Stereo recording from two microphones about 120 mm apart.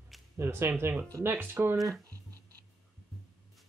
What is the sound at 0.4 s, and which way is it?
Speech, 20° right (ahead or behind).